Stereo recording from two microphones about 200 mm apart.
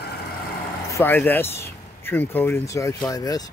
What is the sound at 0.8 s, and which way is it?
A man's voice, 15° left (ahead or behind).